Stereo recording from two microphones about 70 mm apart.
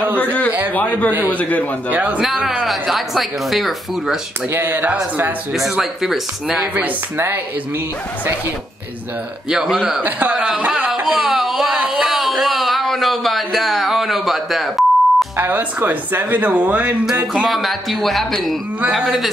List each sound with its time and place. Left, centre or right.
0.2 s a sound: left
0.7 s a man's voice: left
1.9 s speech: centre
2.2 s speech: centre
4.5 s speech: right
5.5 s speech: centre
9.5 s a man's voice: centre
10.0 s speech: right
11.1 s a sound: centre
15.3 s speech: right
17.3 s speech: centre